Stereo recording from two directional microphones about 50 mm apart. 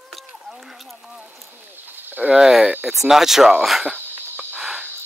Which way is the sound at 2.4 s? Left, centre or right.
Centre.